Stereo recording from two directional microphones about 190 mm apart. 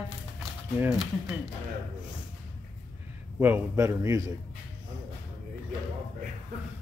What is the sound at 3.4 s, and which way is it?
Speech, 15° right (ahead or behind).